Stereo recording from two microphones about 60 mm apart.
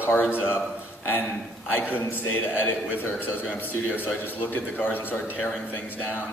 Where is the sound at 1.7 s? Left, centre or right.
Left.